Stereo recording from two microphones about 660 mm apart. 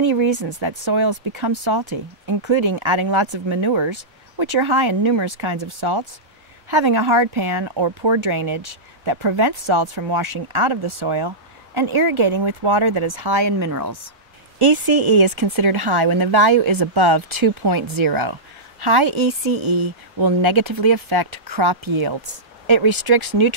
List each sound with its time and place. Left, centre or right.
0.0 s speech: right
14.6 s speech: right
16.1 s speech: right
16.3 s speech: right
16.7 s speech: right
17.1 s speech: right
17.6 s speech: right
18.2 s a woman's voice: right